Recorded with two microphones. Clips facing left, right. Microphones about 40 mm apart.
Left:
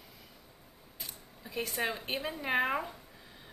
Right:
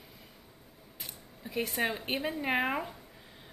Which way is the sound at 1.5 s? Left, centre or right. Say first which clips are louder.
Right 3 dB; right.